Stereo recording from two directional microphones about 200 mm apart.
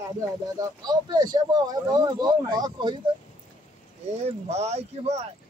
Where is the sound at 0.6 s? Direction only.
20° right (ahead or behind).